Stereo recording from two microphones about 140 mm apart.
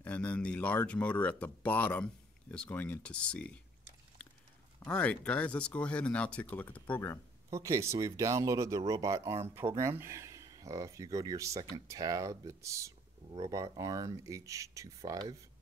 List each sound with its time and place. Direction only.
0.0 s speech: 10° left (ahead or behind)
4.8 s speech: 10° left (ahead or behind)
7.5 s speech: 20° right (ahead or behind)